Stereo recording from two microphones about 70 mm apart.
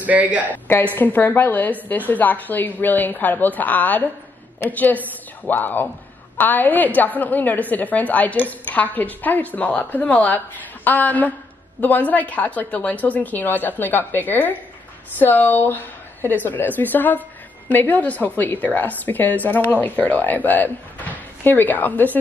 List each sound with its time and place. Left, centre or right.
0.0 s a woman's voice: right
0.9 s a woman's voice: left